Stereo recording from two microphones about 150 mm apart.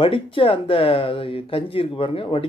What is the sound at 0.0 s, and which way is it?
Speech, 35° left (ahead or behind).